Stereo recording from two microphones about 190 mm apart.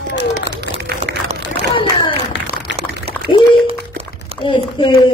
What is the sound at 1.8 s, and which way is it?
Clapping, 25° left (ahead or behind).